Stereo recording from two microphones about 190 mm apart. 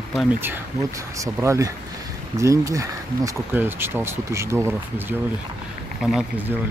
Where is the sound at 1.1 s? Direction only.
15° right (ahead or behind).